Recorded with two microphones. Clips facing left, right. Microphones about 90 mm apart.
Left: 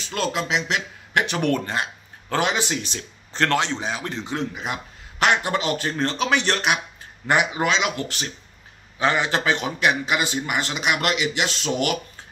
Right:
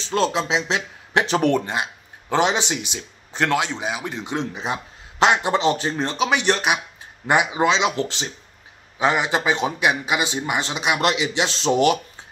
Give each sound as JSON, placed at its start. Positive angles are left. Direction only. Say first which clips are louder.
{"t": 0.0, "sound": "a man's voice", "louder": "right 4 dB", "side_deg": -25}
{"t": 1.7, "sound": "a man's voice", "louder": "right 1 dB", "side_deg": -15}
{"t": 8.9, "sound": "a man's voice", "louder": "right 1 dB", "side_deg": -15}